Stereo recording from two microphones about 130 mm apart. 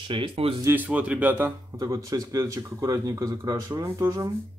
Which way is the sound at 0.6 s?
15° right (ahead or behind).